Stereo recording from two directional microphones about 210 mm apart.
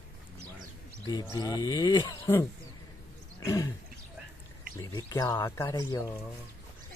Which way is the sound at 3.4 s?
15° left (ahead or behind).